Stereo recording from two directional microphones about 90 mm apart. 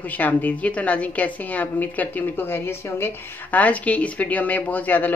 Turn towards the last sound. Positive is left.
turn(degrees=20)  # may be behind; listen again after turning